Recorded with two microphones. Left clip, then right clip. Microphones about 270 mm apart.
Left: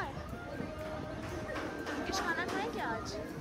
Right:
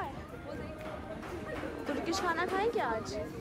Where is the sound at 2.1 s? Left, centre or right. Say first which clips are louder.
Right 3 dB; centre.